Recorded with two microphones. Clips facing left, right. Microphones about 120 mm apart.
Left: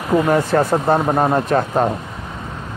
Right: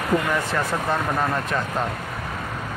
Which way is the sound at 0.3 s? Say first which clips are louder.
Left 9 dB; 40° left (ahead or behind).